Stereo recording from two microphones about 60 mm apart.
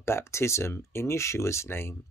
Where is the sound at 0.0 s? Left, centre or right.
Left.